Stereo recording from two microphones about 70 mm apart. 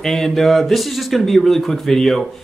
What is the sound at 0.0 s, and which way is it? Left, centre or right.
Speech, centre.